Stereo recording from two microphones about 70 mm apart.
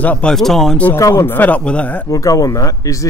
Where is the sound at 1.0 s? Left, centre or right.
Left.